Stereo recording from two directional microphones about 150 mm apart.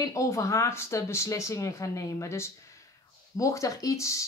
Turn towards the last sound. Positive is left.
turn(degrees=20)  # may be behind; listen again after turning